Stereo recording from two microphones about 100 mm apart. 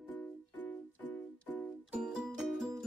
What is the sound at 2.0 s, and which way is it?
Music, 5° right (ahead or behind).